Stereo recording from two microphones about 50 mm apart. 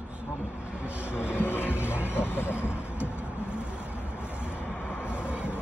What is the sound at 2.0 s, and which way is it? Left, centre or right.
Vehicle, left.